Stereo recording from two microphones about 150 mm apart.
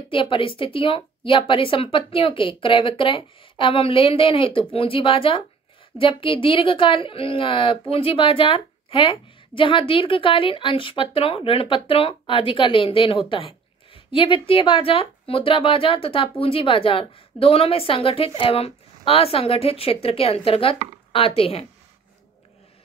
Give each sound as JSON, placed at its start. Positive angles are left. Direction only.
{"t": 0.1, "sound": "a woman's voice", "side_deg": 35}